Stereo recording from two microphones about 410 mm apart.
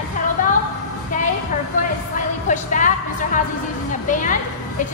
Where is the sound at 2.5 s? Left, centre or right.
Centre.